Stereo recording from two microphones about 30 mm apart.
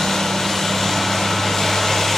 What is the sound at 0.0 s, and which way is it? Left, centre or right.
Vehicle, centre.